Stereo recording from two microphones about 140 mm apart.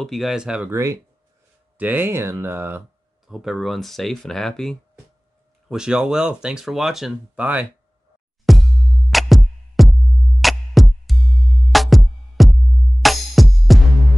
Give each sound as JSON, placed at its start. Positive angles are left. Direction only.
{"t": 0.0, "sound": "speech", "side_deg": 0}
{"t": 0.7, "sound": "speech", "side_deg": -20}
{"t": 3.3, "sound": "speech", "side_deg": 0}
{"t": 8.5, "sound": "music", "side_deg": 0}